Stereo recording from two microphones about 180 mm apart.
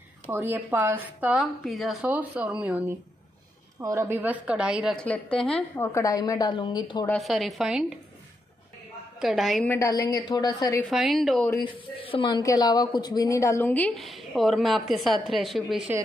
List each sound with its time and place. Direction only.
0.3 s a woman's voice: 15° right (ahead or behind)
3.8 s a woman's voice: 15° right (ahead or behind)
4.9 s a woman's voice: 5° left (ahead or behind)
5.9 s a woman's voice: 15° left (ahead or behind)
7.1 s a woman's voice: centre (ahead or behind)
9.2 s a woman's voice: centre (ahead or behind)
9.7 s a woman's voice: 15° left (ahead or behind)
10.9 s a woman's voice: centre (ahead or behind)
11.6 s speech: 30° left (ahead or behind); by 15.8 s centre (ahead or behind)